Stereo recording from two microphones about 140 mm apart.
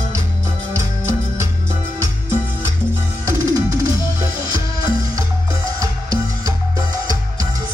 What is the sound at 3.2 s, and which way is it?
Music, 20° right (ahead or behind).